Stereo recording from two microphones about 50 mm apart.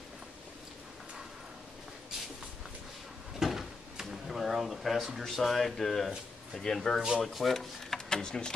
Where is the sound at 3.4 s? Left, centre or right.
Centre.